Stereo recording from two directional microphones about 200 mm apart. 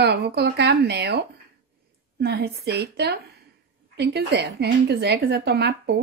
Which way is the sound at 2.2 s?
50° right (ahead or behind).